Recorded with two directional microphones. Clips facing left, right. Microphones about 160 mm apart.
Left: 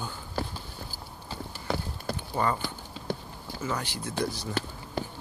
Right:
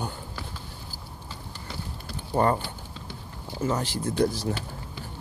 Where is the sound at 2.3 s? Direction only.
40° right (ahead or behind).